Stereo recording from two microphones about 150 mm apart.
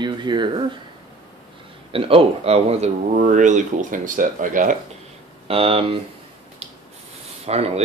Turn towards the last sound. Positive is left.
turn(degrees=-45)  # may be behind; listen again after turning